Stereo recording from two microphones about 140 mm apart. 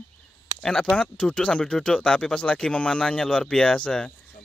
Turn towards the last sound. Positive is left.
turn(degrees=5)  # may be behind; listen again after turning